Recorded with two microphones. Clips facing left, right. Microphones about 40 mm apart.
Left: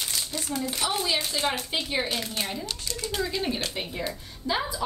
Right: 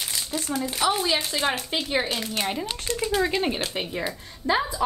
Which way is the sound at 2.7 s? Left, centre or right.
Right.